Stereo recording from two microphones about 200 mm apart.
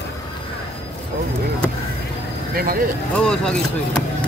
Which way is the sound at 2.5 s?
45° right (ahead or behind).